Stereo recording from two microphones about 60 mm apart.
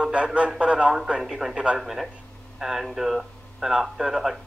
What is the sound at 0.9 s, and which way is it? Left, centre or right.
Speech, centre.